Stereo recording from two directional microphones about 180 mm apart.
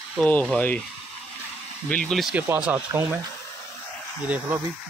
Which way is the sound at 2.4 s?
10° right (ahead or behind).